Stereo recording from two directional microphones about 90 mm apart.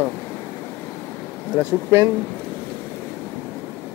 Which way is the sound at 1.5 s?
25° right (ahead or behind).